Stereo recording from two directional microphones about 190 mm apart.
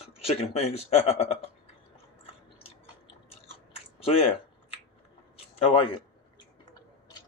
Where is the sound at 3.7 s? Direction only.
30° left (ahead or behind).